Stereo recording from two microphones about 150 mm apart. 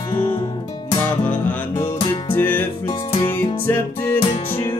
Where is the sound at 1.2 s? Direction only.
10° left (ahead or behind).